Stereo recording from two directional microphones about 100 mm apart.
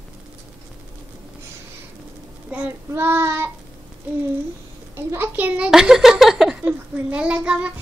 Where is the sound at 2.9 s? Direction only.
25° right (ahead or behind).